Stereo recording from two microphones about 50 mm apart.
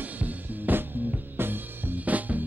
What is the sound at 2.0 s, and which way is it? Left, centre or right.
Music, right.